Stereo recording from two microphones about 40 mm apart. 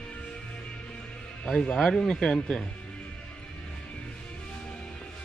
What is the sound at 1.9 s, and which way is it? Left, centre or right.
Speech, centre.